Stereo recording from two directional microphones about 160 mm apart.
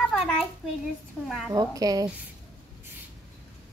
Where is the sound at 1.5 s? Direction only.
20° right (ahead or behind).